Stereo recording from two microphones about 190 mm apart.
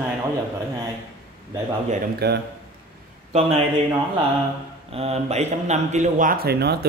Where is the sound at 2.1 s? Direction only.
60° right (ahead or behind).